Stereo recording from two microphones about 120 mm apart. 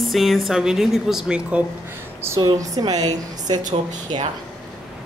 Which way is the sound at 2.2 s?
25° right (ahead or behind).